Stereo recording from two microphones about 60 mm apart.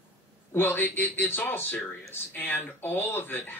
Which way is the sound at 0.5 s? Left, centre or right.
Left.